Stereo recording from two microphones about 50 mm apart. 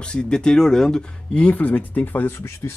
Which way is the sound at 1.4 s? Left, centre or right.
Left.